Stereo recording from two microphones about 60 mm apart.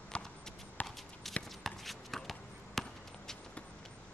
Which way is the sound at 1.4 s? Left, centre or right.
Centre.